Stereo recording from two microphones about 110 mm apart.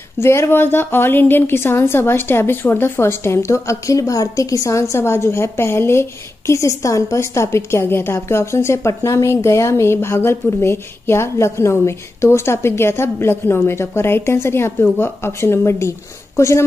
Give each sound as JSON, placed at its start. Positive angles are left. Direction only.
{"t": 0.2, "sound": "a woman's voice", "side_deg": 25}